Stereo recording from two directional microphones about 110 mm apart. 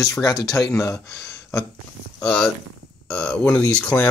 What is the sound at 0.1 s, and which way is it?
Speech, 35° left (ahead or behind).